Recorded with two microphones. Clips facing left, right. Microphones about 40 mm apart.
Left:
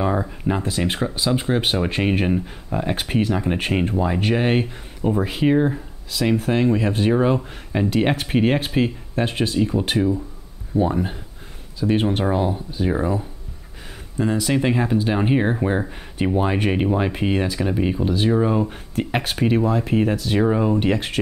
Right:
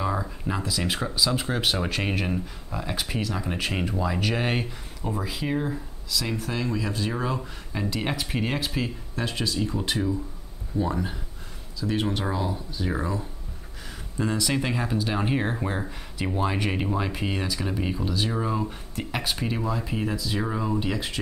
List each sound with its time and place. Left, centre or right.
0.0 s speech: left
5.1 s speech: left
14.1 s speech: centre
16.2 s speech: left
17.6 s speech: centre
17.9 s speech: left
20.8 s speech: left